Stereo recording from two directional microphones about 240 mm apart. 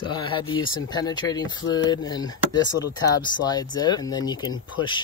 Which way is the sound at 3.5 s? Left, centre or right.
Centre.